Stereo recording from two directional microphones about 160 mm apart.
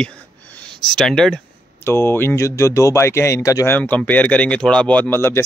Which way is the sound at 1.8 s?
15° left (ahead or behind).